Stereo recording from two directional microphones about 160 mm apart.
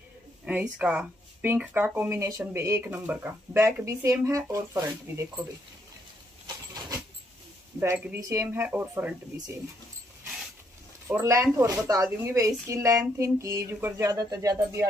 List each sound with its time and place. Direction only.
0.5 s speech: 10° right (ahead or behind)
6.4 s a sound: 25° right (ahead or behind)
7.8 s speech: 20° right (ahead or behind)
11.1 s speech: 20° right (ahead or behind)